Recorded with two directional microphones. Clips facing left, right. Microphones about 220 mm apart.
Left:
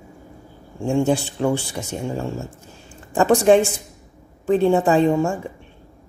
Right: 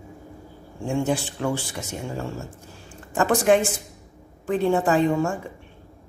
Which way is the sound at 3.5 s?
30° left (ahead or behind).